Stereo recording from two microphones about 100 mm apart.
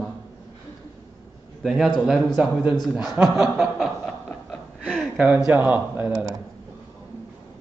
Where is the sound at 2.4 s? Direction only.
15° right (ahead or behind).